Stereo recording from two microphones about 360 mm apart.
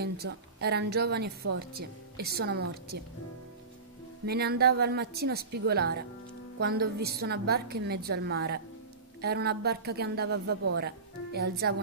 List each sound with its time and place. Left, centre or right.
0.0 s a woman's voice: right
4.3 s a woman's voice: right